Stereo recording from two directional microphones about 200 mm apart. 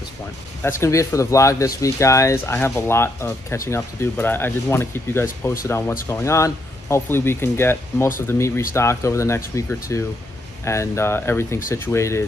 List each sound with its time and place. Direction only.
0.7 s speech: 15° left (ahead or behind)